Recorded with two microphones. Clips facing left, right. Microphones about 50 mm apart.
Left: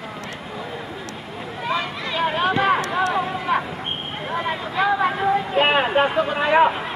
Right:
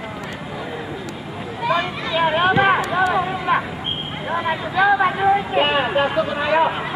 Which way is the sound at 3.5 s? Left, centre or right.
Right.